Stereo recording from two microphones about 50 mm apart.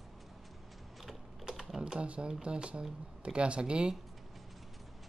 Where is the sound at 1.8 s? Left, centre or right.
Right.